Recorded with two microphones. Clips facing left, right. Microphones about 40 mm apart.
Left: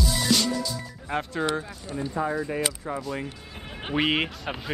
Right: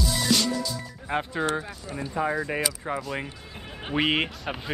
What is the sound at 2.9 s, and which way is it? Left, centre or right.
Speech, right.